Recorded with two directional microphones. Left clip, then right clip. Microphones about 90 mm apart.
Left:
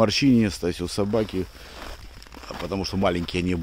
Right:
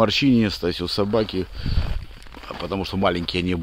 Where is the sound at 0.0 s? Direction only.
35° left (ahead or behind).